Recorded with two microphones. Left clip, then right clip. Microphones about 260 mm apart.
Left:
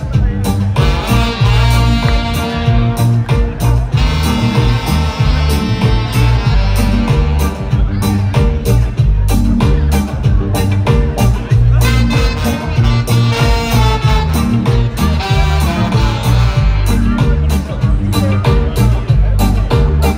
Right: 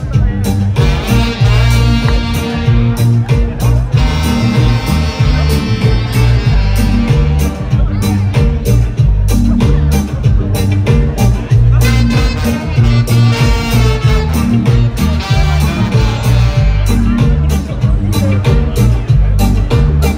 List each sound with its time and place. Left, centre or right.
0.5 s music: left
13.7 s music: centre
14.4 s music: centre
18.1 s music: left